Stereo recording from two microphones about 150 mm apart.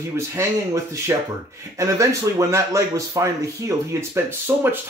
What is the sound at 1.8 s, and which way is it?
Speech, 20° right (ahead or behind).